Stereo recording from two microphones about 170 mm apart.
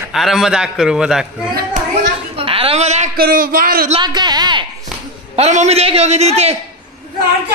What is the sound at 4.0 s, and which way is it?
Speech, 25° right (ahead or behind).